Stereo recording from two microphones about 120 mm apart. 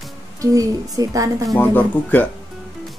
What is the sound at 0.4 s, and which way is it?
A woman's voice, 30° right (ahead or behind).